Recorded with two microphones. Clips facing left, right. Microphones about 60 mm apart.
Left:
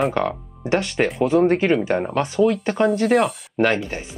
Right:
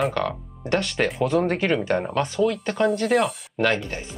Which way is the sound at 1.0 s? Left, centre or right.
Centre.